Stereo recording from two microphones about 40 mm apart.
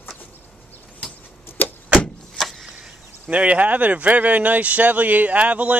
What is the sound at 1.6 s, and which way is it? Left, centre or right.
Vehicle, left.